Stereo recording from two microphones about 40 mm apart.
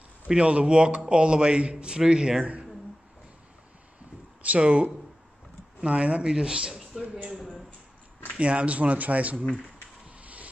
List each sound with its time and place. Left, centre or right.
0.4 s a man's voice: right
4.4 s a man's voice: right; by 7.1 s centre
8.4 s speech: right
10.2 s vehicle: right